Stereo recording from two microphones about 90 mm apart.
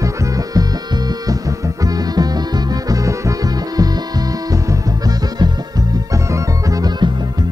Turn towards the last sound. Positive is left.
turn(degrees=-45)  # may be behind; listen again after turning